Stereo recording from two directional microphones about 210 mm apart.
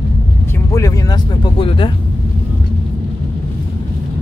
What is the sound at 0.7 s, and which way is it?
Speech, 15° left (ahead or behind).